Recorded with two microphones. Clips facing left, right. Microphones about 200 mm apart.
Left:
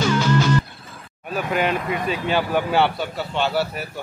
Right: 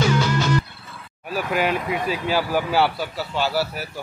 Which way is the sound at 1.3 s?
5° right (ahead or behind).